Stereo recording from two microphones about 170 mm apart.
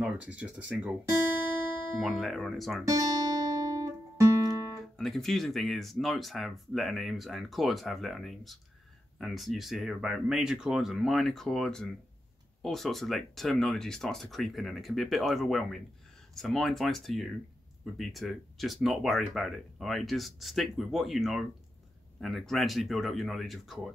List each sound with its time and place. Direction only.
0.0 s speech: 10° right (ahead or behind)
2.0 s speech: centre (ahead or behind)
2.9 s music: 20° right (ahead or behind)
4.9 s speech: centre (ahead or behind)